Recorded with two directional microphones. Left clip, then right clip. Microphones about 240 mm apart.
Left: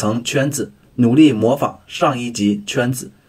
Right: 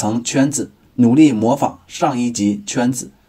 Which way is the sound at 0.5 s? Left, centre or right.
Right.